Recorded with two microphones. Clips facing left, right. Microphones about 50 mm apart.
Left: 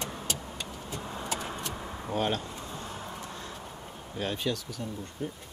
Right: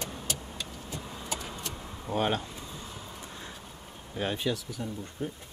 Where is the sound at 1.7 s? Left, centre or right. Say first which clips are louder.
Left 4 dB; left.